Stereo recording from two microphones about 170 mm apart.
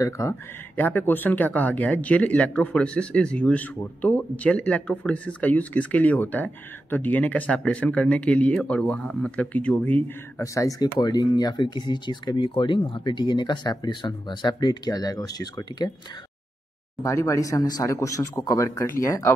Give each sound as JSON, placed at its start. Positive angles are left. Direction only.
{"t": 0.0, "sound": "speech", "side_deg": 15}
{"t": 17.0, "sound": "speech", "side_deg": 15}